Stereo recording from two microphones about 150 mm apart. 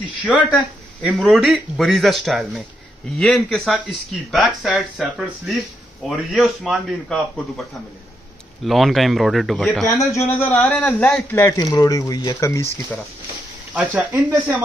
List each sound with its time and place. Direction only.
0.2 s speech: 10° right (ahead or behind)
8.6 s speech: centre (ahead or behind)
10.1 s a man's voice: 15° left (ahead or behind)
13.7 s speech: 10° right (ahead or behind)